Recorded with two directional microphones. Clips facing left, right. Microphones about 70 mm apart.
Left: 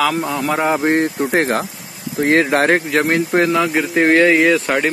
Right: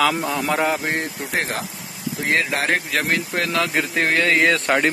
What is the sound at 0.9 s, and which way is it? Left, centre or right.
Speech, left.